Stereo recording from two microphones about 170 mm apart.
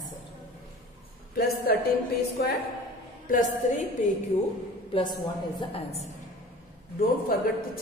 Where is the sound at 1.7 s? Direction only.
65° left (ahead or behind).